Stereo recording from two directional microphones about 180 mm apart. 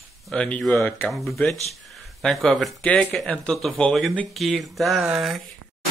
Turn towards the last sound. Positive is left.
turn(degrees=0)  # may be behind; listen again after turning